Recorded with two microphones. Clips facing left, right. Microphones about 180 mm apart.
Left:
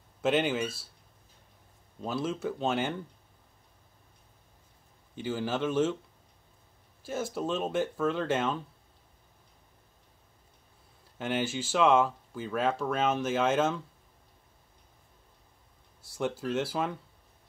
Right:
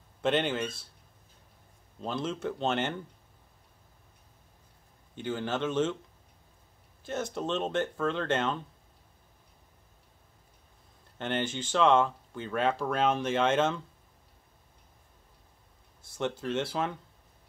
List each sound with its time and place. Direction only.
0.2 s speech: 5° left (ahead or behind)
2.0 s speech: 5° left (ahead or behind)
5.1 s speech: 5° left (ahead or behind)
7.0 s speech: 5° left (ahead or behind)
11.1 s speech: 5° left (ahead or behind)
16.2 s speech: 5° left (ahead or behind)